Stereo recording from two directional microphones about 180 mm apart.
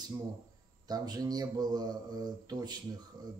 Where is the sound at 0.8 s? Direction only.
20° right (ahead or behind).